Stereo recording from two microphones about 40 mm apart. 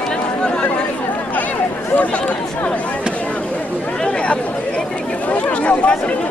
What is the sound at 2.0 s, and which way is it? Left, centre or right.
Chatter, left.